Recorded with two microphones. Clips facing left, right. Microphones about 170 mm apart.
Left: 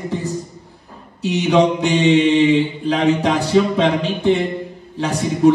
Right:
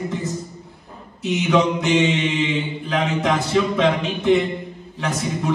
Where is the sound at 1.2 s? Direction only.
35° left (ahead or behind).